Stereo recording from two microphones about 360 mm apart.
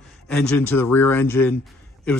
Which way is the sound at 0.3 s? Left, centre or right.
Centre.